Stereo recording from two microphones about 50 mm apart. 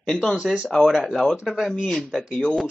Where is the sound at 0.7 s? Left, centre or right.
Centre.